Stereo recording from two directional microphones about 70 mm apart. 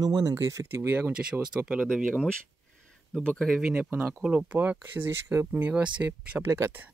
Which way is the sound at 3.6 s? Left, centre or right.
Centre.